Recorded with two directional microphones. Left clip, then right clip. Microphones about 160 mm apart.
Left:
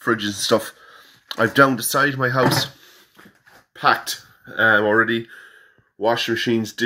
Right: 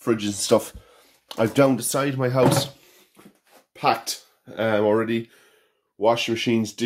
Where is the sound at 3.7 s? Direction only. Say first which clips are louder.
Left 4 dB; 5° right (ahead or behind).